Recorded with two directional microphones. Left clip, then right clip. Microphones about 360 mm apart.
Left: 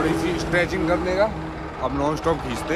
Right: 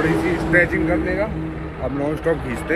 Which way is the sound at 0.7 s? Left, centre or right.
Centre.